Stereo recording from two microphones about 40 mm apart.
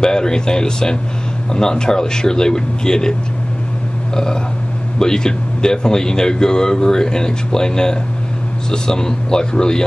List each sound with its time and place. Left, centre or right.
0.0 s speech: centre